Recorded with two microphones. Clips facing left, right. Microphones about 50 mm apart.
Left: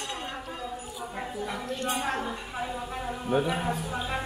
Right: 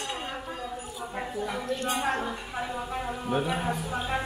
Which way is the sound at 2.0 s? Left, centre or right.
Centre.